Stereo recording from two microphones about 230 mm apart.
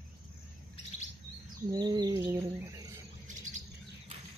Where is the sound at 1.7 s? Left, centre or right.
Centre.